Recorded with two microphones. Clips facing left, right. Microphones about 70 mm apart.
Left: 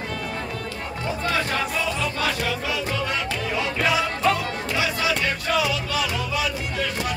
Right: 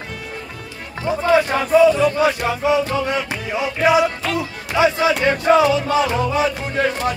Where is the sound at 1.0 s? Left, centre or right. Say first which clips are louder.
Right 10 dB; centre.